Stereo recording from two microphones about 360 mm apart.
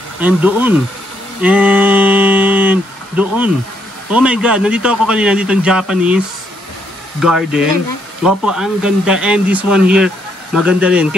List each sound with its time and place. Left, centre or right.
0.2 s speech: centre
1.4 s a sound: centre
4.1 s speech: centre